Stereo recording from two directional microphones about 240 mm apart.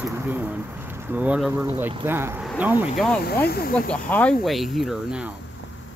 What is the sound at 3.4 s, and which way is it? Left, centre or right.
Speech, left.